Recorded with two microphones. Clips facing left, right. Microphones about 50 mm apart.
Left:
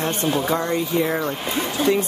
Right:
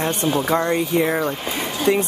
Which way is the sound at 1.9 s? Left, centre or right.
Right.